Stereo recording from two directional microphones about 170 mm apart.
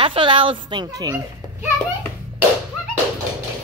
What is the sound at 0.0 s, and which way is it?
A woman's voice, 30° right (ahead or behind).